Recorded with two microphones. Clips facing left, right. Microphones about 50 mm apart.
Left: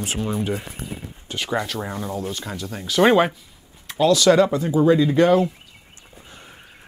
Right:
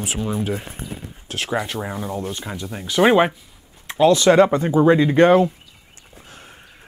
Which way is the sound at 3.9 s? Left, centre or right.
Right.